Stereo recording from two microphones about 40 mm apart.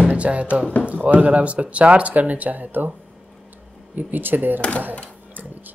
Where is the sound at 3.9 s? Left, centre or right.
Right.